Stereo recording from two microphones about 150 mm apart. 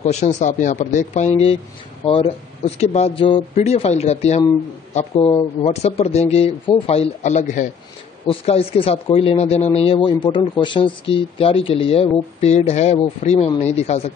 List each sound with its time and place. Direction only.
0.0 s speech: 50° left (ahead or behind)
8.3 s speech: 40° left (ahead or behind)